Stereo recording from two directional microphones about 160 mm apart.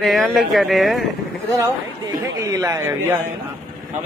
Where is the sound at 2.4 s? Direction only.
20° right (ahead or behind).